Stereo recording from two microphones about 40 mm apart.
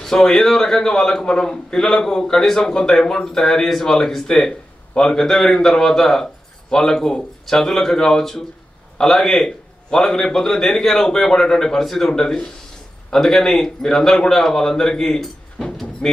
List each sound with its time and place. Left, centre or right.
0.0 s a man's voice: centre
12.1 s a man's voice: centre
15.6 s music: centre